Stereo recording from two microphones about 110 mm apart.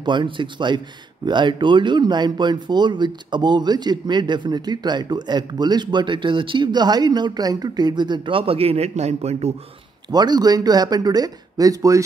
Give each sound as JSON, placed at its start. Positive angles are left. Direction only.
{"t": 0.0, "sound": "speech", "side_deg": -45}
{"t": 10.1, "sound": "speech", "side_deg": -40}